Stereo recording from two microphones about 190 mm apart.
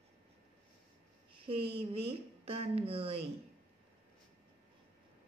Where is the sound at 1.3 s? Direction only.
30° right (ahead or behind).